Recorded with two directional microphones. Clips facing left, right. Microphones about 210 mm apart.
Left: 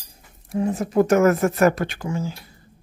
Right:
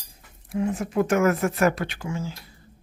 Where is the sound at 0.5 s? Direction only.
40° left (ahead or behind).